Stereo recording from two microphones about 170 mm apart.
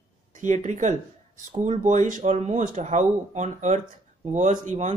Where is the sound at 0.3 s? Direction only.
45° right (ahead or behind).